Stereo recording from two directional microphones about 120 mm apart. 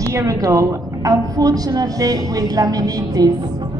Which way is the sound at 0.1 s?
30° right (ahead or behind).